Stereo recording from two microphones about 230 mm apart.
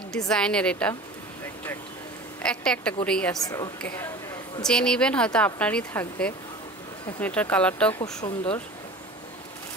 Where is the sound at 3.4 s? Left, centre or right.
Centre.